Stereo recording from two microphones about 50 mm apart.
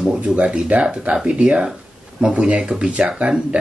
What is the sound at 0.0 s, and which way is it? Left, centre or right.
Speech, right.